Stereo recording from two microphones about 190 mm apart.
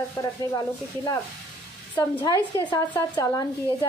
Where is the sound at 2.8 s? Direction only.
10° left (ahead or behind).